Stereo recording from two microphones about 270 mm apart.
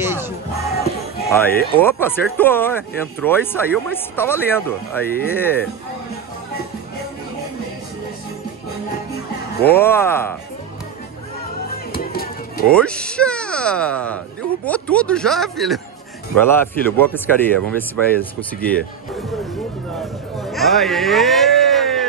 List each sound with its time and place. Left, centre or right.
0.0 s music: centre
1.3 s speech: centre
9.7 s speech: centre
11.9 s music: left
12.6 s speech: centre
20.4 s music: centre